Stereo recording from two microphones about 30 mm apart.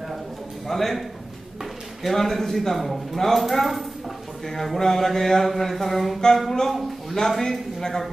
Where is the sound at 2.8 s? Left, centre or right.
Centre.